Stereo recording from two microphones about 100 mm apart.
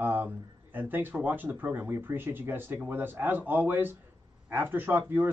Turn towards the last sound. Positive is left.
turn(degrees=-20)  # may be behind; listen again after turning